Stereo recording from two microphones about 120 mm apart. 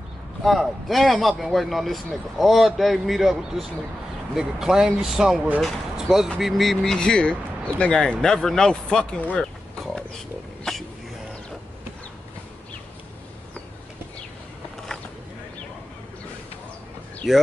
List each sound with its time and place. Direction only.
0.4 s speech: centre (ahead or behind)
17.2 s speech: centre (ahead or behind)